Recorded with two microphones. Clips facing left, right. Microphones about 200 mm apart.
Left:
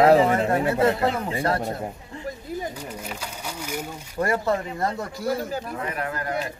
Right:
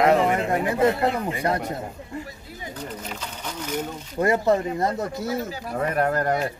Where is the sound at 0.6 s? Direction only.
15° right (ahead or behind).